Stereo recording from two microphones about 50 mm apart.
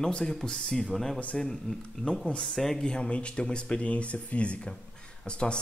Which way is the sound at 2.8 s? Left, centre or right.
Centre.